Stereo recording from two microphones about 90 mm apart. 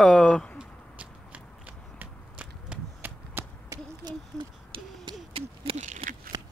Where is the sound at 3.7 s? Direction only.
35° right (ahead or behind).